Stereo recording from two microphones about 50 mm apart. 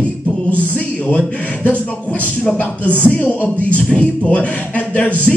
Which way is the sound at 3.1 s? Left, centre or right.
Left.